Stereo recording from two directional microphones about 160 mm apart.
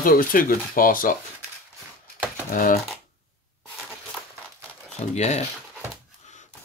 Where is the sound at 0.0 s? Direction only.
60° left (ahead or behind).